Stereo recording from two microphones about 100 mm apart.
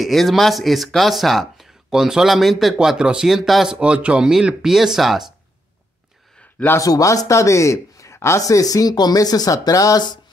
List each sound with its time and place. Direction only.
0.0 s speech: centre (ahead or behind)
6.8 s speech: 35° left (ahead or behind)